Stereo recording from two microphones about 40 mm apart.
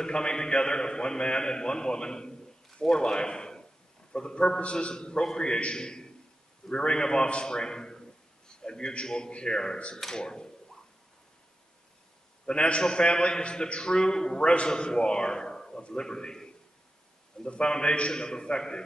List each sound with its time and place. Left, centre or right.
0.0 s a man's voice: left
9.9 s speech: centre
12.4 s a man's voice: left
17.5 s a man's voice: left